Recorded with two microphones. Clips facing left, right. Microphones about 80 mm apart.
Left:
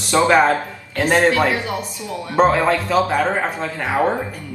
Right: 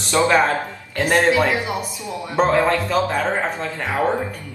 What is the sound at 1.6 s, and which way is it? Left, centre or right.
Speech, centre.